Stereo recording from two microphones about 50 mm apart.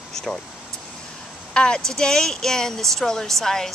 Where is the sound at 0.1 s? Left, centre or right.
Centre.